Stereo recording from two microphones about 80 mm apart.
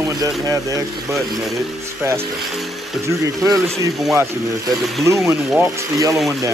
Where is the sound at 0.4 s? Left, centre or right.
Right.